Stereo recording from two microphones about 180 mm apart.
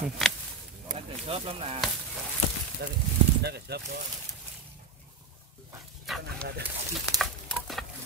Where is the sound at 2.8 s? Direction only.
70° right (ahead or behind).